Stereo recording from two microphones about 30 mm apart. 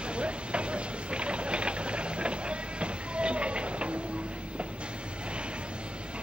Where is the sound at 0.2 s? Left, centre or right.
Right.